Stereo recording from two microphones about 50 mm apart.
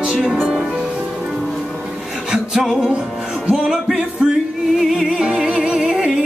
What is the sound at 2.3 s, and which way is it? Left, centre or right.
Music, centre.